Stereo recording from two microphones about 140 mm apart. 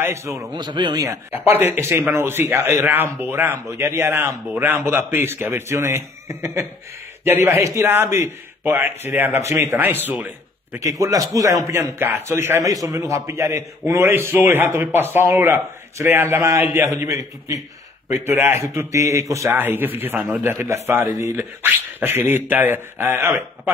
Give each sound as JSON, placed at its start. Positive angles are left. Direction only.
{"t": 0.0, "sound": "a man's voice", "side_deg": -20}
{"t": 0.6, "sound": "a man's voice", "side_deg": -35}
{"t": 1.0, "sound": "a man's voice", "side_deg": -20}